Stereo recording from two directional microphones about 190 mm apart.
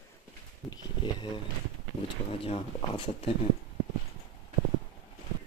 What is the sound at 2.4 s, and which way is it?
Speech, 30° left (ahead or behind).